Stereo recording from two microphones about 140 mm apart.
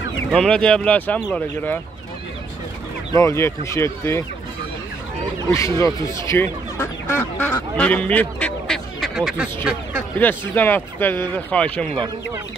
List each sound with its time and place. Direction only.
0.3 s speech: 5° left (ahead or behind)
3.1 s speech: 20° left (ahead or behind)
5.8 s speech: 20° left (ahead or behind); by 9.5 s 5° right (ahead or behind)
10.1 s speech: 10° left (ahead or behind)